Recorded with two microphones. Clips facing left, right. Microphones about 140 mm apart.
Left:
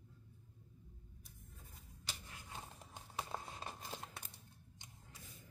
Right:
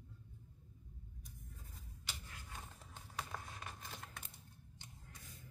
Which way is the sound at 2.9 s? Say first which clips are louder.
Left 2 dB; 25° left (ahead or behind).